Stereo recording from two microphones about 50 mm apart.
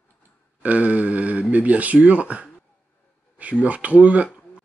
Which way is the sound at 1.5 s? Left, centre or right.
Right.